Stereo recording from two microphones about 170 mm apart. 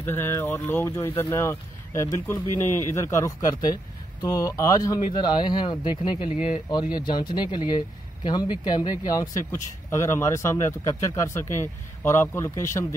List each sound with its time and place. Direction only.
0.0 s speech: 15° left (ahead or behind)